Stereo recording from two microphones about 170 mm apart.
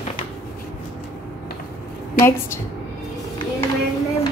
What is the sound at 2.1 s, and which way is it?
Speech, 15° left (ahead or behind).